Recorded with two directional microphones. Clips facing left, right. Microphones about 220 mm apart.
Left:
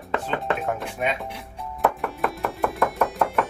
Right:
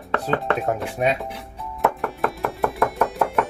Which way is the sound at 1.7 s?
Centre (ahead or behind).